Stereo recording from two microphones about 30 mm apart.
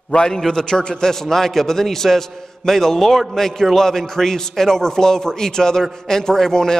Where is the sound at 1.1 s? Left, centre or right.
Centre.